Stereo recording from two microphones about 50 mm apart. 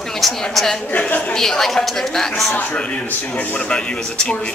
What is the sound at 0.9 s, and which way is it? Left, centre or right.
Speech, left.